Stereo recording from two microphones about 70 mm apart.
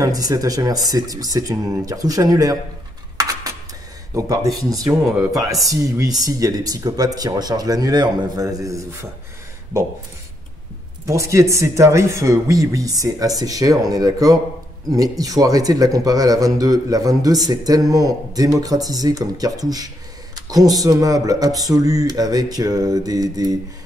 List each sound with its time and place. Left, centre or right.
0.0 s speech: right
3.2 s a sound: right
4.1 s speech: right
8.4 s speech: right
11.1 s speech: right